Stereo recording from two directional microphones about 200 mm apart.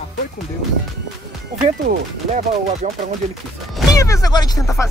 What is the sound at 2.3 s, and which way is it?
Speech, 35° right (ahead or behind).